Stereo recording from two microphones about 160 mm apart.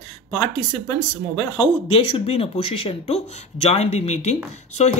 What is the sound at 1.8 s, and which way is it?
Speech, 40° left (ahead or behind).